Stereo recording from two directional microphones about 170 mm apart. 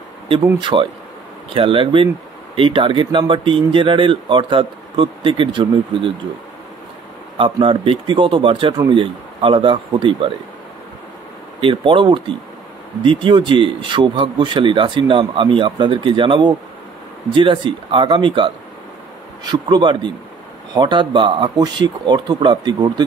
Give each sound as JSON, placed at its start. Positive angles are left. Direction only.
{"t": 0.3, "sound": "speech", "side_deg": -30}
{"t": 7.3, "sound": "speech", "side_deg": -30}
{"t": 11.6, "sound": "speech", "side_deg": -30}